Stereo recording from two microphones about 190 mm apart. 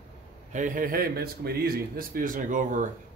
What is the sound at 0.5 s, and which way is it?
A man's voice, 40° right (ahead or behind).